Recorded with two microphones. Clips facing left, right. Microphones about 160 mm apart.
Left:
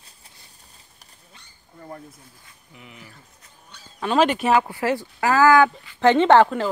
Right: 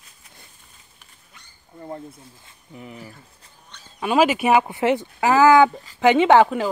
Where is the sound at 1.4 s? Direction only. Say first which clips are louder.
Right 3 dB; 30° left (ahead or behind).